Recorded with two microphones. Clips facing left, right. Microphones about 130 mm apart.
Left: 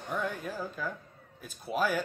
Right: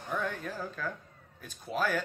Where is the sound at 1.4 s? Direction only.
10° left (ahead or behind).